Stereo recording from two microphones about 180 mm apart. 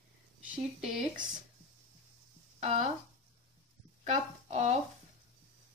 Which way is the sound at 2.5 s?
40° right (ahead or behind).